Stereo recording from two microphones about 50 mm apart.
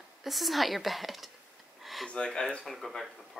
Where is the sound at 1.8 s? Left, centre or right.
Centre.